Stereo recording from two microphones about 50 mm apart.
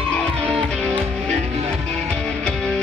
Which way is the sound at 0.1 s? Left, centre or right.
Left.